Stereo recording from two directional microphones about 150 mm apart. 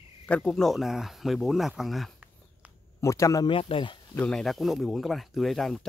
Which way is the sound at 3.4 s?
35° left (ahead or behind).